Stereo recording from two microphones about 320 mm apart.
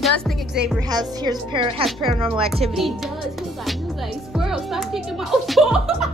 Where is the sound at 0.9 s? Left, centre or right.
Centre.